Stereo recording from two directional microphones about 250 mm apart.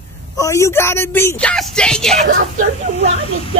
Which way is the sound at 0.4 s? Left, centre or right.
Centre.